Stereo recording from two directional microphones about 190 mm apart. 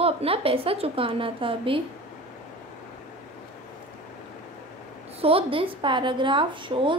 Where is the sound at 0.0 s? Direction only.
30° right (ahead or behind).